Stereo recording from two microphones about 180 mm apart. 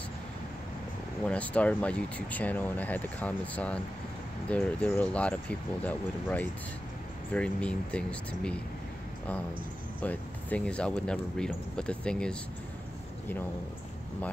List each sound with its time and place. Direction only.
1.2 s speech: 5° left (ahead or behind)
10.0 s speech: 10° left (ahead or behind)